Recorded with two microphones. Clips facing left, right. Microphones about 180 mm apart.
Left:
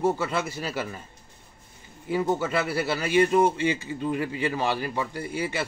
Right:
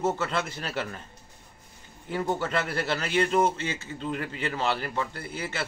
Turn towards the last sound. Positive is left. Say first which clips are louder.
# left 5 dB
turn(degrees=10)  # may be behind; listen again after turning